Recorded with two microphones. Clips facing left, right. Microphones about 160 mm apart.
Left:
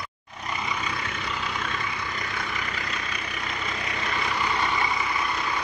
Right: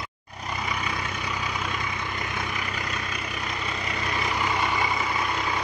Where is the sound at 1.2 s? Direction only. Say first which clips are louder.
Even; 10° right (ahead or behind).